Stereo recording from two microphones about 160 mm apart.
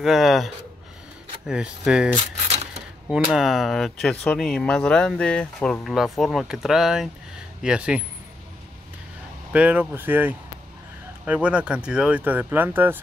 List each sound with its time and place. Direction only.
0.0 s speech: centre (ahead or behind)
1.5 s speech: 5° right (ahead or behind)
2.4 s a sound: 40° right (ahead or behind)
3.1 s speech: 5° right (ahead or behind)
9.5 s speech: 10° right (ahead or behind)